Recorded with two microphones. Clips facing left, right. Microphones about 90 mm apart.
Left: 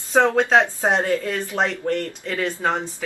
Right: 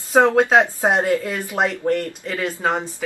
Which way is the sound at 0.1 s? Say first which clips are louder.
Right 2 dB; 10° right (ahead or behind).